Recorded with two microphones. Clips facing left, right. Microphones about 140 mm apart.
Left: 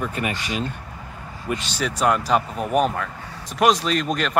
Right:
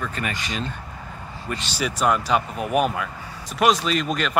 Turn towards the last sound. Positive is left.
turn(degrees=0)  # may be behind; listen again after turning